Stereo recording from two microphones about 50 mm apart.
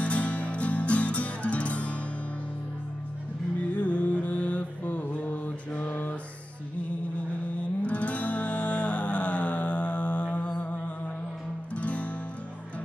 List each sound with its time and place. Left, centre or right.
0.0 s music: left
3.7 s mantra: left
7.8 s music: left